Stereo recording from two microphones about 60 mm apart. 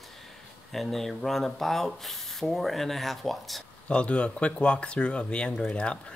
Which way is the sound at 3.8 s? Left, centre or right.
Centre.